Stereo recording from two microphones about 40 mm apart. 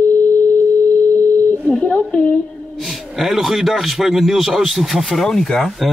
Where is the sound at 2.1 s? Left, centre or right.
Left.